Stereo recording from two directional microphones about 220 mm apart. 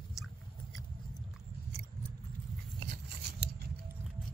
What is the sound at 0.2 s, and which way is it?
Chewing, centre (ahead or behind).